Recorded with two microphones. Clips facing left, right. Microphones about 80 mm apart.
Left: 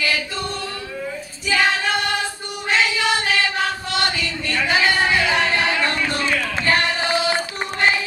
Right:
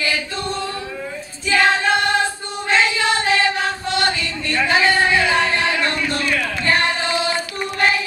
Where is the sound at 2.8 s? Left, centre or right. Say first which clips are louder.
Right 1 dB; right.